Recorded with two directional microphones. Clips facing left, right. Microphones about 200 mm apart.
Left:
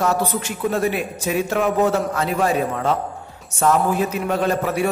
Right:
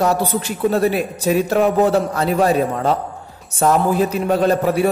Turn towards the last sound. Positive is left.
turn(degrees=-35)  # may be behind; listen again after turning